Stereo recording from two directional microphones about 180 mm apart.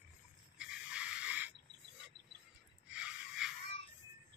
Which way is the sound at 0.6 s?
5° right (ahead or behind).